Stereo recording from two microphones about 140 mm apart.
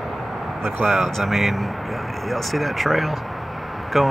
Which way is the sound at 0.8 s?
Centre (ahead or behind).